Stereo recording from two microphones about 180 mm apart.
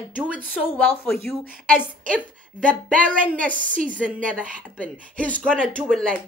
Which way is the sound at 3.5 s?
50° right (ahead or behind).